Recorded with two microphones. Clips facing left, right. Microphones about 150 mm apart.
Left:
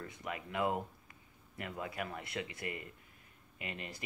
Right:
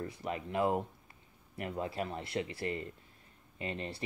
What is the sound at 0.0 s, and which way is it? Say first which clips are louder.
Speech: right 5 dB; 30° right (ahead or behind).